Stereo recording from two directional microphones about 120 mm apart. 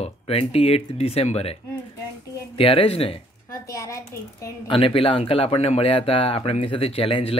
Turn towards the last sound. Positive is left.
turn(degrees=50)  # may be behind; listen again after turning